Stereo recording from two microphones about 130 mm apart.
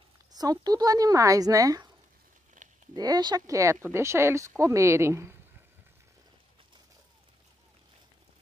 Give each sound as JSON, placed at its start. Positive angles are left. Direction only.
{"t": 0.3, "sound": "speech", "side_deg": -30}
{"t": 2.9, "sound": "speech", "side_deg": -30}